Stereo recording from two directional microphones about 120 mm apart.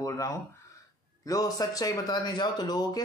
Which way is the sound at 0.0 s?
25° left (ahead or behind).